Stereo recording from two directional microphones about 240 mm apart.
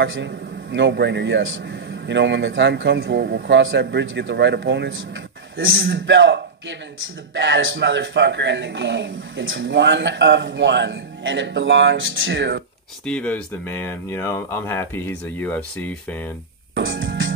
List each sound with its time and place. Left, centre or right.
0.0 s a man's voice: right
13.0 s speech: centre
16.7 s music: right